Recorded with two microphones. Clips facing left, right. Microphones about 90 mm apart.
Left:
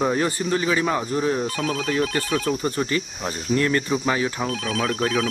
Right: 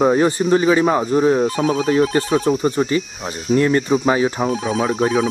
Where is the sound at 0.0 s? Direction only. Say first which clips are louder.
Right 7 dB; 25° right (ahead or behind).